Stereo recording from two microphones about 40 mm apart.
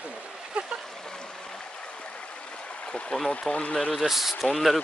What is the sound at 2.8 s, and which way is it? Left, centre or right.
Speech, left.